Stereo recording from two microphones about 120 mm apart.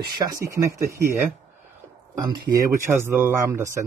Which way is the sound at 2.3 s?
25° right (ahead or behind).